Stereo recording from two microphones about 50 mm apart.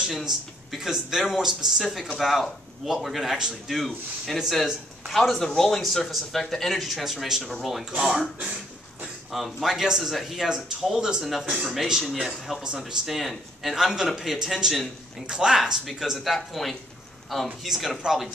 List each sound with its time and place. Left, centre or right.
0.0 s a man's voice: centre
8.1 s speech: centre
9.3 s speech: centre
11.2 s a man's voice: centre